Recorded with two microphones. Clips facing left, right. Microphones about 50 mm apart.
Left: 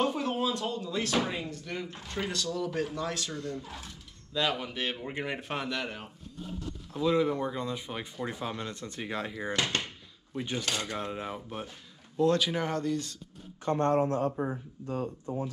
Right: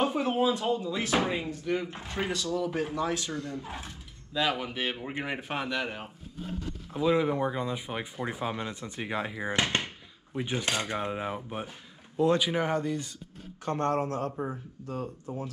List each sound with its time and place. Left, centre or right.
0.0 s speech: centre
3.5 s speech: right
4.3 s speech: centre
13.7 s speech: right